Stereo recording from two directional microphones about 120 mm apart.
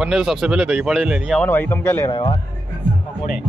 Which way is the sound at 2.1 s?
40° left (ahead or behind).